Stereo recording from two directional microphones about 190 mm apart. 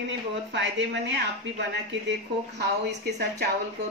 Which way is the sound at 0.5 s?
70° right (ahead or behind).